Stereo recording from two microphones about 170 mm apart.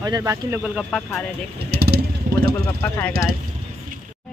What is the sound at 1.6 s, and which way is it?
Vehicle, 70° right (ahead or behind).